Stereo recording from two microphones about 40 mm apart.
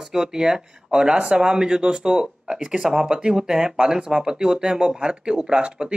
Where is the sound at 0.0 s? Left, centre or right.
Centre.